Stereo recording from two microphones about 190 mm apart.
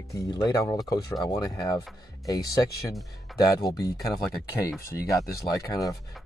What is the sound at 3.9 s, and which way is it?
Speech, centre (ahead or behind).